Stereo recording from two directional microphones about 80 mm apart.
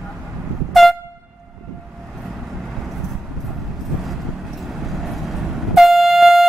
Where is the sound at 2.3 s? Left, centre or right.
Centre.